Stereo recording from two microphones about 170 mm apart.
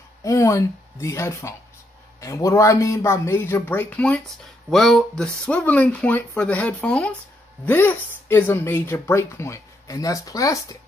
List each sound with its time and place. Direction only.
0.2 s speech: 20° left (ahead or behind)